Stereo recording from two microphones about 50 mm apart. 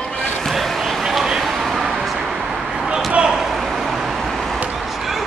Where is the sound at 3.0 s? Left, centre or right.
Centre.